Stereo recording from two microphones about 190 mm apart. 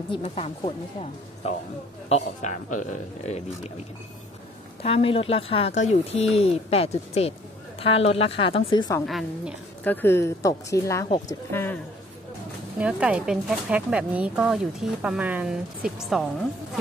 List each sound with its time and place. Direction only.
0.1 s speech: 30° left (ahead or behind)
4.8 s a woman's voice: 30° left (ahead or behind)
9.0 s a woman's voice: centre (ahead or behind)
10.0 s a woman's voice: 15° left (ahead or behind)
12.7 s speech: 5° right (ahead or behind)